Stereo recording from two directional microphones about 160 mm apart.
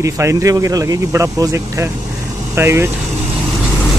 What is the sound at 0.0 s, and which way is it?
Speech, 20° right (ahead or behind).